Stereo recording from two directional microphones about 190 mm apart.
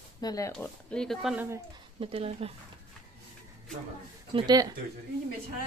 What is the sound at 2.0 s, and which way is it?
Speech, 30° right (ahead or behind).